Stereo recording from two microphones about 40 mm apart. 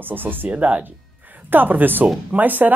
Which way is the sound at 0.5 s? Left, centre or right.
Right.